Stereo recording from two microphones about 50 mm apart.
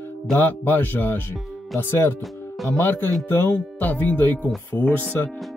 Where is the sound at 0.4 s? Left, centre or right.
Left.